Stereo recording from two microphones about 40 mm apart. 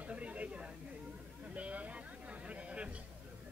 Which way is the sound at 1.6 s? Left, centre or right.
Right.